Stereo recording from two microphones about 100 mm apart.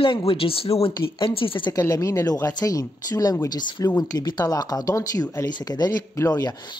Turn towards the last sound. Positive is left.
turn(degrees=35)  # may be behind; listen again after turning